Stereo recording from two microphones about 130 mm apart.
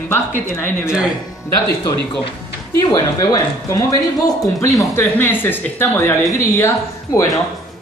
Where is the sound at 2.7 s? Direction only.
25° left (ahead or behind).